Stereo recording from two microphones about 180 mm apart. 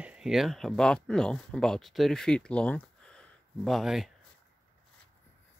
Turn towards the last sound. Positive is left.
turn(degrees=0)  # may be behind; listen again after turning